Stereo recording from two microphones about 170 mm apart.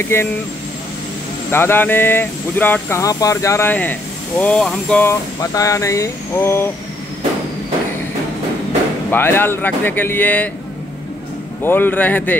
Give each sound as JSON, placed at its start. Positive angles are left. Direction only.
{"t": 0.0, "sound": "speech", "side_deg": 15}
{"t": 1.5, "sound": "speech", "side_deg": 15}
{"t": 5.4, "sound": "speech", "side_deg": 20}
{"t": 9.1, "sound": "speech", "side_deg": 10}
{"t": 11.6, "sound": "speech", "side_deg": 10}